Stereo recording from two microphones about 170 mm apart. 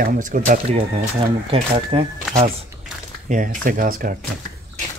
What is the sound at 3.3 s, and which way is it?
Speech, 55° right (ahead or behind).